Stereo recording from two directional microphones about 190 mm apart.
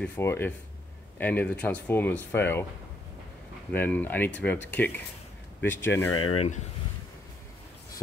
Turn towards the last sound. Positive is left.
turn(degrees=30)  # may be behind; listen again after turning